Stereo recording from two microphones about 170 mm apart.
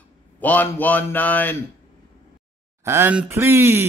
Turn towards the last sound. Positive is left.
turn(degrees=-15)  # may be behind; listen again after turning